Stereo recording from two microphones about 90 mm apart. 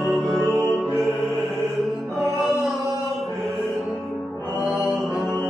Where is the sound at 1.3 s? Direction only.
20° right (ahead or behind).